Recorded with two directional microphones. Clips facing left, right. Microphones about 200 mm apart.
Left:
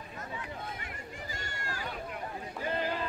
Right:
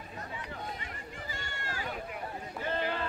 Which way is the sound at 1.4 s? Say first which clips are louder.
Even; 40° left (ahead or behind).